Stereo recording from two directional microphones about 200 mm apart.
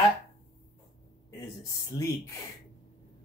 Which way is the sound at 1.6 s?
15° left (ahead or behind).